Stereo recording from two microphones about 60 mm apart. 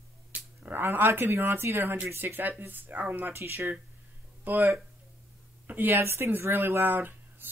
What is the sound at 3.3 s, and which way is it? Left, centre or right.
Speech, right.